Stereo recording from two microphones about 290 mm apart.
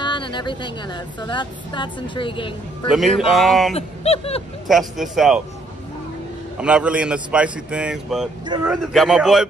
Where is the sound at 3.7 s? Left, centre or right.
Left.